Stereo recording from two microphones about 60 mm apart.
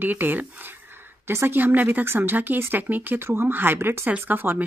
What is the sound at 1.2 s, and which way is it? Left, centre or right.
Speech, right.